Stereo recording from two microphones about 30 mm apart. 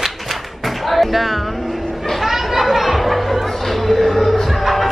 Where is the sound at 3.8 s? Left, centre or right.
Centre.